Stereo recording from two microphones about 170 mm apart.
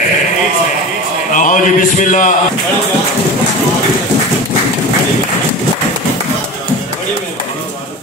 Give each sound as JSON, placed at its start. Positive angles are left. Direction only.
{"t": 1.3, "sound": "speech", "side_deg": 50}